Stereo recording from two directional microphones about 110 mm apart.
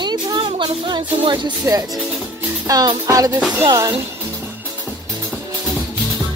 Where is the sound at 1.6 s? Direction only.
30° right (ahead or behind).